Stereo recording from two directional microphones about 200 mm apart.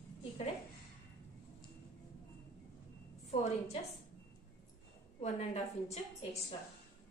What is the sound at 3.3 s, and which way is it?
Speech, 35° left (ahead or behind).